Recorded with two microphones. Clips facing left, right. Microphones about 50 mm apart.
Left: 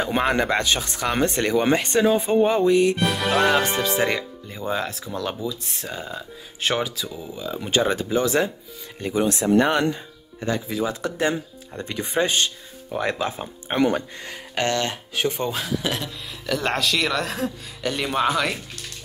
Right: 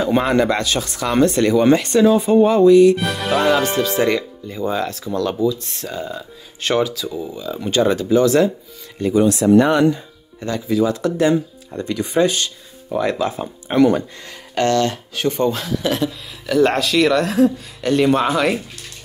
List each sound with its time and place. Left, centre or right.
0.0 s speech: left
3.0 s speech: centre
3.6 s speech: left; by 7.7 s centre
7.7 s speech: left
10.4 s speech: left
13.7 s speech: left
14.5 s music: centre
15.2 s speech: centre